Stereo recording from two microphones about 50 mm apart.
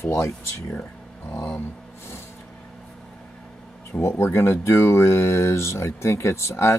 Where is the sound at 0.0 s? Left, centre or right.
Left.